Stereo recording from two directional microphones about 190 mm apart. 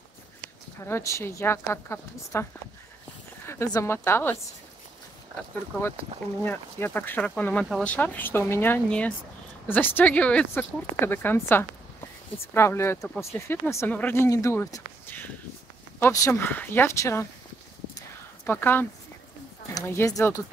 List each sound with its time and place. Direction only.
0.8 s speech: 15° left (ahead or behind)
3.4 s speech: 15° left (ahead or behind)
6.4 s speech: 10° left (ahead or behind)
17.9 s a sound: 10° left (ahead or behind)
19.7 s speech: 15° left (ahead or behind)